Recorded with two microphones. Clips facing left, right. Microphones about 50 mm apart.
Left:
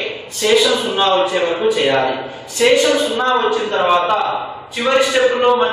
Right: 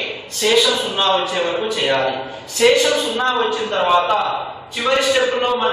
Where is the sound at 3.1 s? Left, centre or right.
Centre.